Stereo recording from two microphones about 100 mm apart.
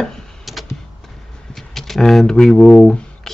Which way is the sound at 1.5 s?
5° left (ahead or behind).